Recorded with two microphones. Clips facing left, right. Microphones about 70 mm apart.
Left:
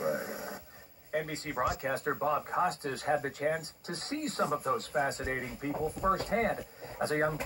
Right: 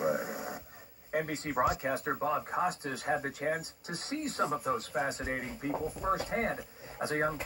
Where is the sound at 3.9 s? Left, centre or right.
Left.